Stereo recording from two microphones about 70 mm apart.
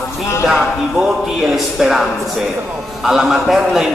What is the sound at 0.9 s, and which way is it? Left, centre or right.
A man's voice, centre.